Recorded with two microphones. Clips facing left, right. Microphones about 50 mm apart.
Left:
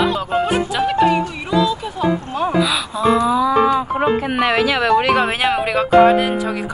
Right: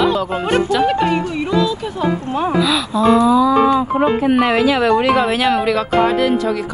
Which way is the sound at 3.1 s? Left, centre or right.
Left.